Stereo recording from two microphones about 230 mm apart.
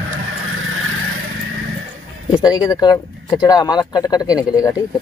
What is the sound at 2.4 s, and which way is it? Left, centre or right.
Speech, centre.